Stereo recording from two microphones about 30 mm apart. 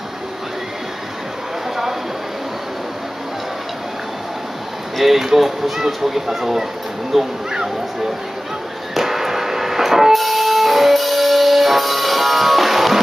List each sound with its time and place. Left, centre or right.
4.9 s speech: centre
7.5 s speech: centre
8.9 s music: centre